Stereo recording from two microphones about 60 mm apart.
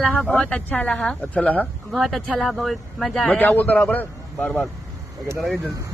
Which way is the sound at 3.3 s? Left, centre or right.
Left.